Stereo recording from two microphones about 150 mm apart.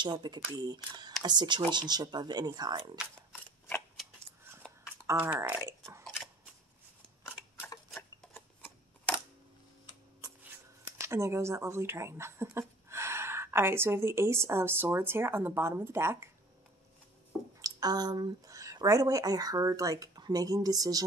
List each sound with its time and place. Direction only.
0.0 s speech: 30° right (ahead or behind)
5.0 s speech: 15° right (ahead or behind)
11.0 s speech: 20° right (ahead or behind)
17.6 s speech: 25° right (ahead or behind)